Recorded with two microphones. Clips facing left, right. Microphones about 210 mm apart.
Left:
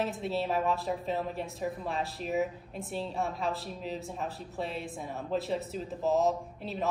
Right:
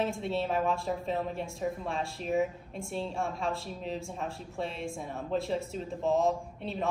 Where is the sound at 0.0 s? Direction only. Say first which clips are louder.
Right 1 dB; centre (ahead or behind).